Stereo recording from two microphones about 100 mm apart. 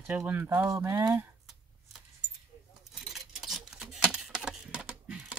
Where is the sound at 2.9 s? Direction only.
Centre (ahead or behind).